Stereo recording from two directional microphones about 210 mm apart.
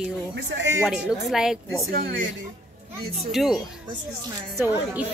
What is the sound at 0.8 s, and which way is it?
Speech, centre (ahead or behind).